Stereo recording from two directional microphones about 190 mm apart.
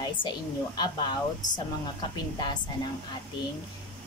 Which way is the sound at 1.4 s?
40° left (ahead or behind).